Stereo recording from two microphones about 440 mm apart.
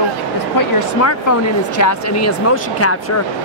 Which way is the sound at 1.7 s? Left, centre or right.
Left.